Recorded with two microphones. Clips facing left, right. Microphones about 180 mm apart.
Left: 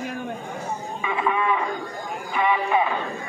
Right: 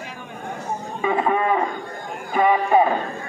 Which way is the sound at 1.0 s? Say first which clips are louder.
Right 5 dB; 40° right (ahead or behind).